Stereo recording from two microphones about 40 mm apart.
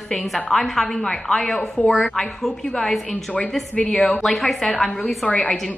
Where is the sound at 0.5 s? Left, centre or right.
Centre.